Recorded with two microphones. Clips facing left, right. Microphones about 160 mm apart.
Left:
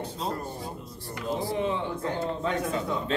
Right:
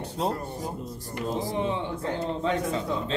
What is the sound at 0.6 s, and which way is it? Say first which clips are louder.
A man's voice: right 4 dB; 40° right (ahead or behind).